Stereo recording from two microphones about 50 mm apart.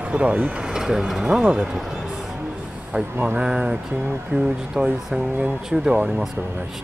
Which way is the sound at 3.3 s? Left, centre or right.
Centre.